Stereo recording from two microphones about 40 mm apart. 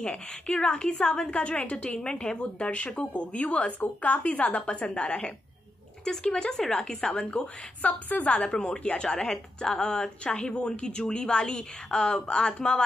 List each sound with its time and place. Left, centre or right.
0.0 s a woman's voice: left
7.2 s a woman's voice: left